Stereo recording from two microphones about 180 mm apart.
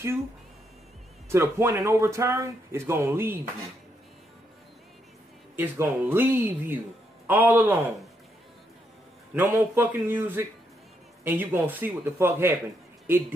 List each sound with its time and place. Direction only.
1.3 s speech: 15° right (ahead or behind)
5.6 s speech: 10° right (ahead or behind)
9.3 s speech: 10° right (ahead or behind)